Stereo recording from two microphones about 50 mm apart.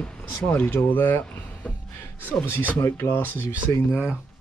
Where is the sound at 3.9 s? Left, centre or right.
Right.